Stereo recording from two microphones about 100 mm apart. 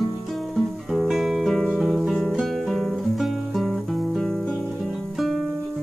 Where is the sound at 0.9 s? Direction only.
5° right (ahead or behind).